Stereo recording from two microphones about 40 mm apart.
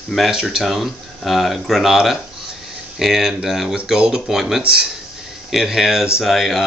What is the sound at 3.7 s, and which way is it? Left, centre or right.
Speech, right.